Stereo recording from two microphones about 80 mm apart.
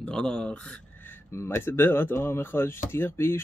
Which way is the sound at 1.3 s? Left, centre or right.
Left.